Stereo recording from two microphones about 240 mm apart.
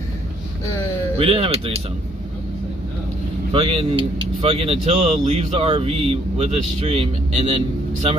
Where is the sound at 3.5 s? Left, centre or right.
Right.